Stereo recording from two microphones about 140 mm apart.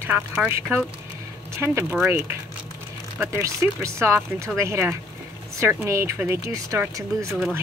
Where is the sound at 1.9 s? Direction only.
20° right (ahead or behind).